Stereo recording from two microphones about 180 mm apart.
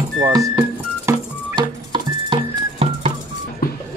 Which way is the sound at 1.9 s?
30° right (ahead or behind).